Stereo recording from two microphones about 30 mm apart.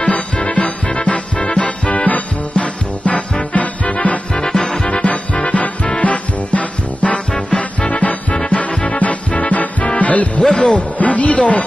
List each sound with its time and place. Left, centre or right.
0.0 s music: left
4.4 s music: centre
4.8 s music: left
10.5 s music: left
10.8 s speech: left